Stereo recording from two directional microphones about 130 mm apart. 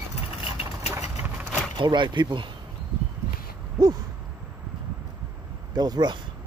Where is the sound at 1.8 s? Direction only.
35° right (ahead or behind).